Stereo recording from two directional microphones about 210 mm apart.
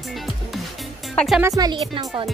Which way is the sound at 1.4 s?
15° right (ahead or behind).